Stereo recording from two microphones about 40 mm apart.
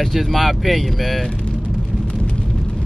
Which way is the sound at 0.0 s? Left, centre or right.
Centre.